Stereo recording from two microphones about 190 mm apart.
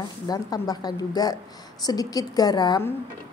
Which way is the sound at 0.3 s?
20° left (ahead or behind).